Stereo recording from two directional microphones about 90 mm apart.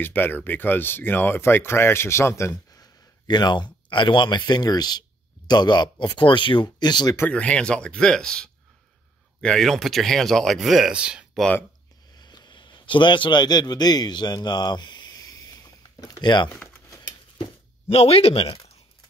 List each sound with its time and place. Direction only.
0.0 s speech: 20° left (ahead or behind); by 7.2 s 55° left (ahead or behind)
7.2 s speech: 15° left (ahead or behind); by 11.2 s 10° right (ahead or behind)
12.1 s a sound: 50° left (ahead or behind)
17.4 s speech: 90° left